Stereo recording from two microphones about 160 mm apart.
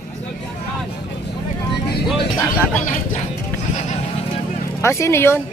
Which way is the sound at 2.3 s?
20° left (ahead or behind).